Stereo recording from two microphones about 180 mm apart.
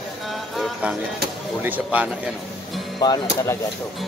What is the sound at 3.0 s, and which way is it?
Speech, 20° left (ahead or behind).